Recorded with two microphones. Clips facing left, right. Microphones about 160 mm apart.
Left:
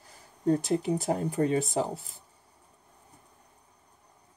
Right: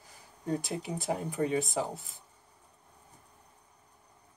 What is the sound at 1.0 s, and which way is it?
Speech, 40° left (ahead or behind).